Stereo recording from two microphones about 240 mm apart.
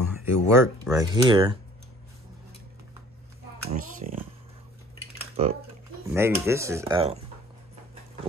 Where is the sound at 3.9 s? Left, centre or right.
Right.